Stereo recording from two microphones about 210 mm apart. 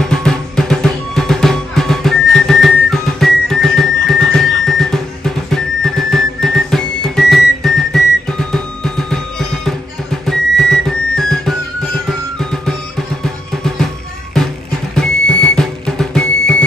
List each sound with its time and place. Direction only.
0.0 s music: centre (ahead or behind)
10.2 s music: centre (ahead or behind)
13.2 s music: centre (ahead or behind)